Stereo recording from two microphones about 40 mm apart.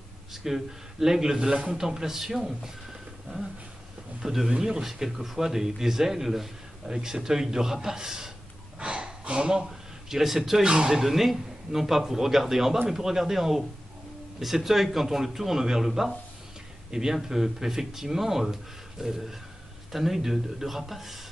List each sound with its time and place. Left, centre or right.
0.3 s a man's voice: centre
4.5 s speech: centre
4.8 s a man's voice: centre
8.7 s gasp: right
9.7 s a man's voice: centre
10.6 s speech: centre
10.9 s a man's voice: centre